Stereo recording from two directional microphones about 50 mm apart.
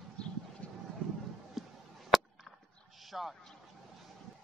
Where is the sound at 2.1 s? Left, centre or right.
Centre.